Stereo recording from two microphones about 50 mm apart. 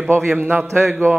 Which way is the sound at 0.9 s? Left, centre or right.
Right.